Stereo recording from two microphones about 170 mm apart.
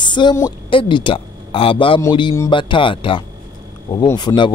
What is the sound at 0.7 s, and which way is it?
A man's voice, 30° left (ahead or behind).